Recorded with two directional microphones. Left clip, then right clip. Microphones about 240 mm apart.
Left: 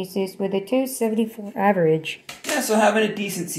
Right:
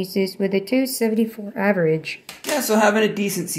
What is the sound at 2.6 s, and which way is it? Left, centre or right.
Speech, right.